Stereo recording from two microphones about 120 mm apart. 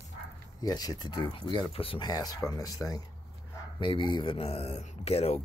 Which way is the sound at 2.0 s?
35° left (ahead or behind).